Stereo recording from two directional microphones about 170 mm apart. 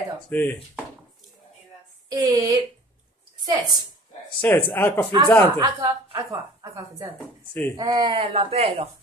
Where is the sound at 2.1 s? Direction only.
25° right (ahead or behind).